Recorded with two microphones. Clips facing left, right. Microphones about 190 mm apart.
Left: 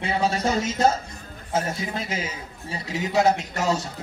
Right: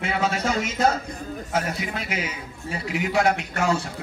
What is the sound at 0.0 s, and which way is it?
A man's voice, 30° left (ahead or behind).